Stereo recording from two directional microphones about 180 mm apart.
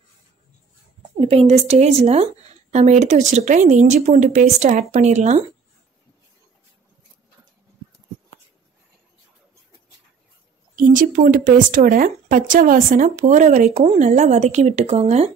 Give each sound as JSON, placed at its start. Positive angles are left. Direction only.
{"t": 1.2, "sound": "speech", "side_deg": -35}
{"t": 10.8, "sound": "speech", "side_deg": -50}